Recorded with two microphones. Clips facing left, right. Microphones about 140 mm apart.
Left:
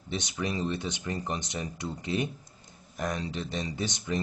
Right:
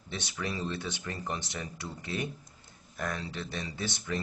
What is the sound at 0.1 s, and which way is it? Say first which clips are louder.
Speech: left 4 dB; 20° left (ahead or behind).